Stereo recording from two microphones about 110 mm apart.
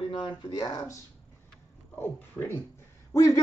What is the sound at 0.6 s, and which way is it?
Speech, 30° left (ahead or behind).